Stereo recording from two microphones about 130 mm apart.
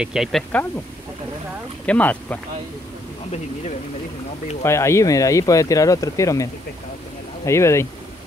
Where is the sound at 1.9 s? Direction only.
10° left (ahead or behind).